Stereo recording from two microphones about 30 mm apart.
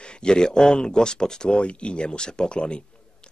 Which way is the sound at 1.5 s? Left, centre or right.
Left.